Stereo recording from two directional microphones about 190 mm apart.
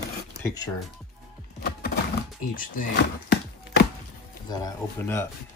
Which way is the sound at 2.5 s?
45° left (ahead or behind).